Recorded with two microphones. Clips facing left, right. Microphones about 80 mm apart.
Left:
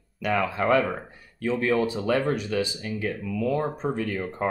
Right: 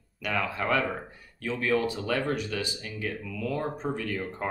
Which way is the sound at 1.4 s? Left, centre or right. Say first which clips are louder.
Left 4 dB; left.